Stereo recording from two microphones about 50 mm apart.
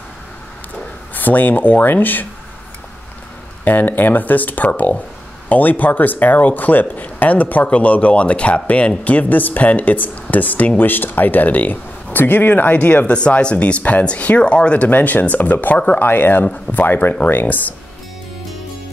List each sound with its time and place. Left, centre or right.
1.1 s speech: left
3.6 s speech: left
13.1 s speech: left
14.9 s speech: left